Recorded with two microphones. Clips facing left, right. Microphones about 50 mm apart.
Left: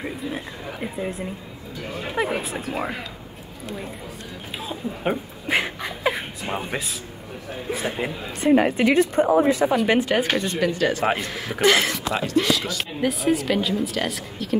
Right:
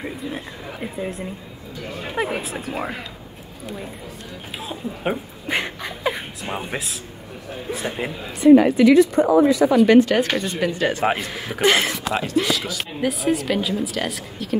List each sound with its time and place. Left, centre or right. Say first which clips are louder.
0.0 s speech: even; centre
4.6 s speech: even; centre
5.6 s a sound: left 1 dB; centre
7.7 s speech: even; centre
8.5 s a woman's voice: right 6 dB; left
9.8 s a woman's voice: right 5 dB; centre
10.7 s speech: right 1 dB; right
11.1 s a man's voice: right 1 dB; centre
11.6 s a man's voice: even; centre